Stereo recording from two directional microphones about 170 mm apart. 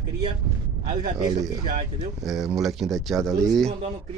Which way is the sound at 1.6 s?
45° right (ahead or behind).